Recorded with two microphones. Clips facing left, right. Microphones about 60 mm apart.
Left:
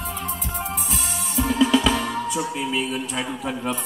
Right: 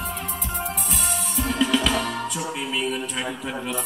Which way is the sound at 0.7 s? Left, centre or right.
Centre.